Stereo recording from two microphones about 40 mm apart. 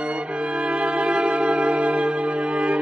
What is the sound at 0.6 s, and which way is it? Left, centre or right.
Music, right.